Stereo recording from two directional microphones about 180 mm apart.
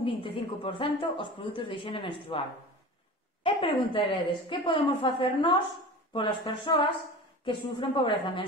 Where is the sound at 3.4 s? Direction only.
30° left (ahead or behind).